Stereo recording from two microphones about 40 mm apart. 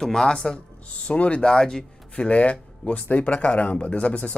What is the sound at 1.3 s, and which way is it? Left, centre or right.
Speech, centre.